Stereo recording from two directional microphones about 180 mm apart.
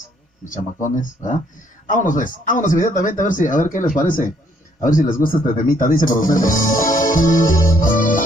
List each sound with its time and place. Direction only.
0.5 s speech: 45° left (ahead or behind)